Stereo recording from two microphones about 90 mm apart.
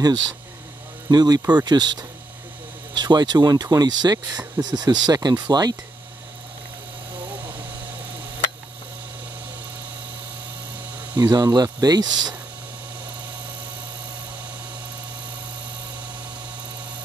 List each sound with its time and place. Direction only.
1.0 s speech: 45° right (ahead or behind)
11.1 s speech: 45° right (ahead or behind)